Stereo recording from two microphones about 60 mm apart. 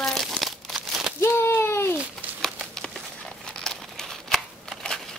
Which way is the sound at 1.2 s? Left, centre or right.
Left.